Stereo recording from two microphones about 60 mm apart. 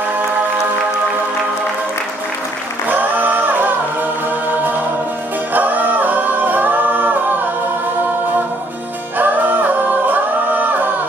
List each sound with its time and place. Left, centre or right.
2.9 s singing: right
5.5 s a capella: right
9.2 s singing: right